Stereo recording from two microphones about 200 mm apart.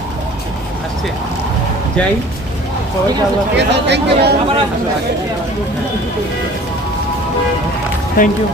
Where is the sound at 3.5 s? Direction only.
60° right (ahead or behind).